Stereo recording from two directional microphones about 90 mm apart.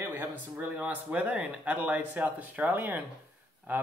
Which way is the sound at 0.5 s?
15° right (ahead or behind).